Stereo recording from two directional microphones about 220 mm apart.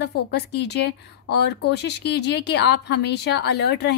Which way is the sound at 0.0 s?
50° left (ahead or behind).